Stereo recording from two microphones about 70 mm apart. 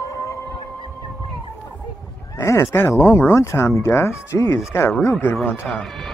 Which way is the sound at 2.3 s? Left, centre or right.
Left.